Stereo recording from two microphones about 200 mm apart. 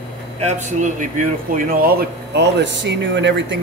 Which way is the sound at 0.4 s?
35° right (ahead or behind).